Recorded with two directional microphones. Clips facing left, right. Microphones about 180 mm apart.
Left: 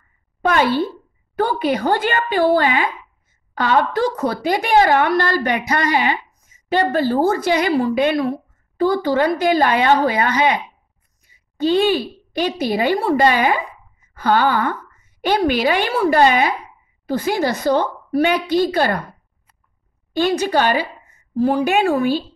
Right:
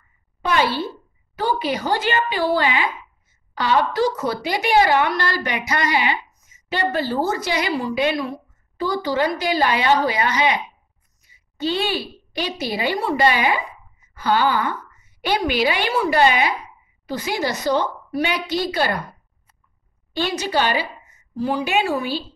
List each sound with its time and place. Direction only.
0.5 s a woman's voice: 50° left (ahead or behind)
11.6 s a woman's voice: 45° left (ahead or behind)
20.1 s a woman's voice: 50° left (ahead or behind)